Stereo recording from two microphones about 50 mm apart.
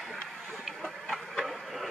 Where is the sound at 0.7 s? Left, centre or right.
Centre.